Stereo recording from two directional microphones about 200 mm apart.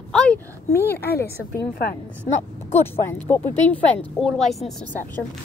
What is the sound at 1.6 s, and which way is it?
Speech, 50° left (ahead or behind).